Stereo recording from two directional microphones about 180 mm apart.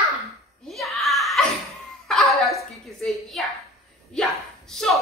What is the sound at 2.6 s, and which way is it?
Speech, centre (ahead or behind).